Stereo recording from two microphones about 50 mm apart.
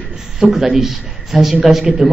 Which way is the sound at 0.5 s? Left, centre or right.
Centre.